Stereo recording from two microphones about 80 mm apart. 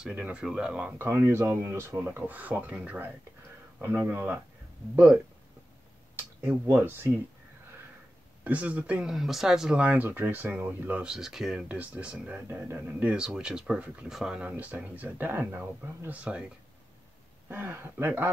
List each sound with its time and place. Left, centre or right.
0.1 s speech: centre
0.9 s speech: right; by 3.1 s centre
4.1 s speech: right
6.4 s speech: right
8.5 s speech: centre
9.1 s speech: centre
11.1 s speech: centre
11.6 s speech: centre
12.4 s speech: right
13.0 s speech: centre
17.5 s speech: right